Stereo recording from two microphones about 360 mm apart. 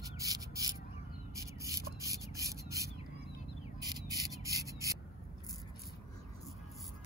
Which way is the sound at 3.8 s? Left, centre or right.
Centre.